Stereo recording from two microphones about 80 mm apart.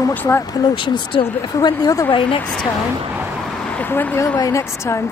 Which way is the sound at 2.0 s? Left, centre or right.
Left.